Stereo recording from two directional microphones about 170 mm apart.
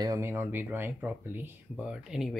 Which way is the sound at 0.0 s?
15° right (ahead or behind).